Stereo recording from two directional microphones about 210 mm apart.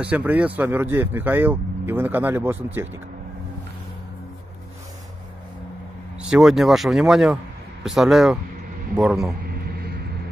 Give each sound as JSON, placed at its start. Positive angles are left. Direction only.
{"t": 0.0, "sound": "speech", "side_deg": -10}
{"t": 6.1, "sound": "speech", "side_deg": -5}
{"t": 9.4, "sound": "a sound", "side_deg": -45}